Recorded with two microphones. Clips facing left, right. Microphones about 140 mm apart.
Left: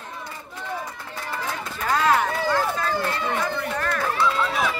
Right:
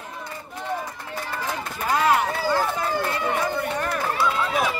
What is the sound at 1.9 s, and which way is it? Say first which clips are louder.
Run: even; 10° right (ahead or behind).